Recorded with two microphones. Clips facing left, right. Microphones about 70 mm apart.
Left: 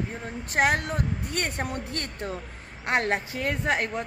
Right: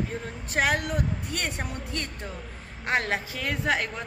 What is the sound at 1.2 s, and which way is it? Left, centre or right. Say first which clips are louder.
Speech: left 2 dB; left.